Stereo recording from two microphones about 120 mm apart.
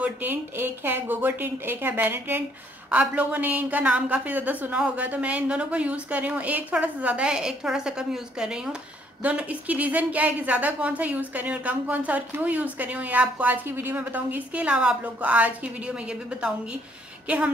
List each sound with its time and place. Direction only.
0.0 s speech: 15° right (ahead or behind)